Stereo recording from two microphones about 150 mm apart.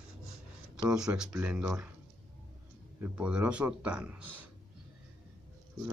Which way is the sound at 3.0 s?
5° right (ahead or behind).